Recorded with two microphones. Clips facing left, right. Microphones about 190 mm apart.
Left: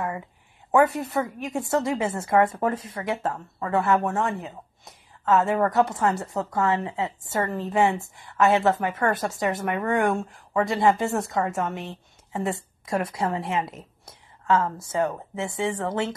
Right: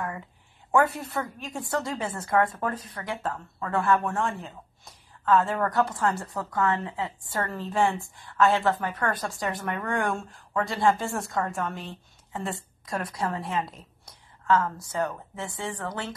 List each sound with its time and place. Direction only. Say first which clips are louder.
1.2 s a woman's voice: left 6 dB; 20° left (ahead or behind)